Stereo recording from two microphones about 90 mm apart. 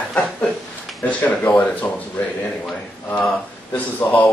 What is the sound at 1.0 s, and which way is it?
Speech, 20° left (ahead or behind).